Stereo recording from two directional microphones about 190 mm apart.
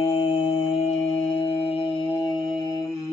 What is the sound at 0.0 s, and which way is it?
Mantra, 30° left (ahead or behind).